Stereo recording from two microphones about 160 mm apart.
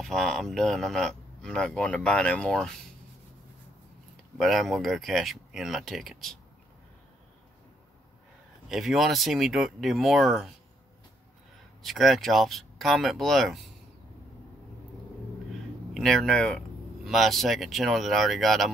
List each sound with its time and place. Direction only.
0.0 s speech: centre (ahead or behind)
4.4 s speech: centre (ahead or behind)
8.6 s speech: centre (ahead or behind)
11.8 s speech: centre (ahead or behind)
15.9 s speech: 5° left (ahead or behind)